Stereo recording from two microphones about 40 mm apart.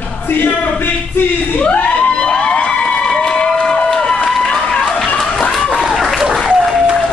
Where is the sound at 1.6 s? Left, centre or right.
Left.